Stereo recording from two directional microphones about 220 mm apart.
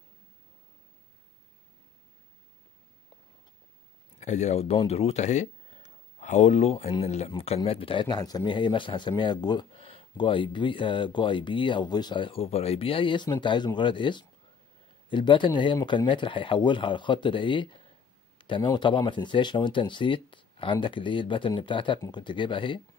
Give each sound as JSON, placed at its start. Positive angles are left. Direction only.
{"t": 4.2, "sound": "speech", "side_deg": 30}